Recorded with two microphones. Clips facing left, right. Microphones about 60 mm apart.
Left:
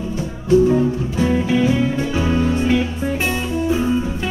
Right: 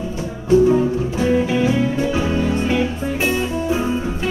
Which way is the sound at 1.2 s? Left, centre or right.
Centre.